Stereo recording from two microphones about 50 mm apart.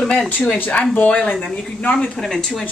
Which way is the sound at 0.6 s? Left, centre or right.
Left.